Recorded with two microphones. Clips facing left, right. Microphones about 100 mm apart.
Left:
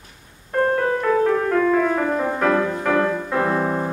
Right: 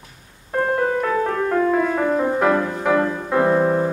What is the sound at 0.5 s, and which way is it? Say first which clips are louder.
Music: even; 10° right (ahead or behind).